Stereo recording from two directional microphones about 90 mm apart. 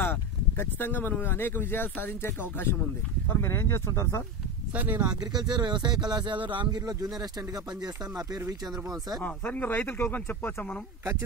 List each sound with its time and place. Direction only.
0.0 s speech: 25° left (ahead or behind)
4.7 s speech: 20° right (ahead or behind)
5.2 s speech: 50° right (ahead or behind)
9.2 s speech: 20° left (ahead or behind)